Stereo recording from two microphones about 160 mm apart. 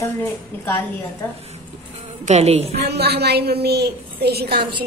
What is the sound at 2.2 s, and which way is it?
Speech, 45° right (ahead or behind).